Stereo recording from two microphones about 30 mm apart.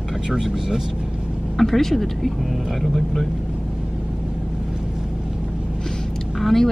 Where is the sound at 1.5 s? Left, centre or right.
Centre.